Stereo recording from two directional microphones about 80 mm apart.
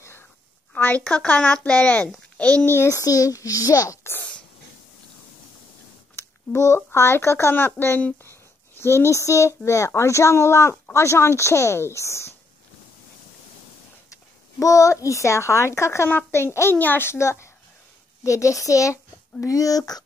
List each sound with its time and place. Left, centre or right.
0.7 s a woman's voice: left
2.7 s speech: left
3.0 s a child's voice: left
6.1 s speech: left
14.6 s a child's voice: left